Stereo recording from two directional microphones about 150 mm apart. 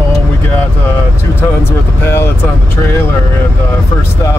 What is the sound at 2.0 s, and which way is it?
Speech, 15° left (ahead or behind).